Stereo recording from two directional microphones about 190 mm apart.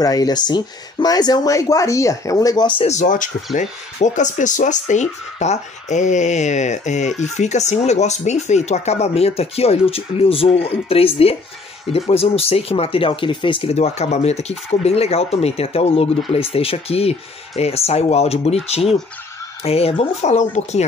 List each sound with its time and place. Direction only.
0.0 s speech: 20° left (ahead or behind)
2.8 s speech: 40° left (ahead or behind)